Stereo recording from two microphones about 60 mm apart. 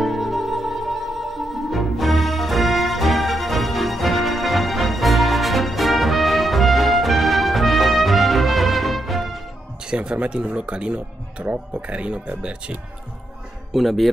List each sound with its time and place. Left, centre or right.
0.0 s music: centre
9.8 s speech: centre
13.7 s speech: centre